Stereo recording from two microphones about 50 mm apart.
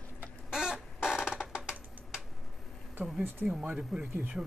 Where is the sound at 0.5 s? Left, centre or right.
Centre.